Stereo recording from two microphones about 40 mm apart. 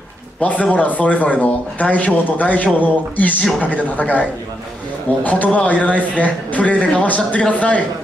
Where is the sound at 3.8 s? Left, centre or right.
Left.